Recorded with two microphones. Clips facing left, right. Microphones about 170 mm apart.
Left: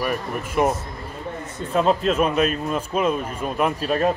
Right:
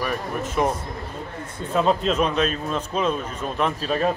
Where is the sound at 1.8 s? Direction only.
5° left (ahead or behind).